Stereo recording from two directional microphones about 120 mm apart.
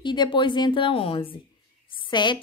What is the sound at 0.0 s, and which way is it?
A woman's voice, 40° left (ahead or behind).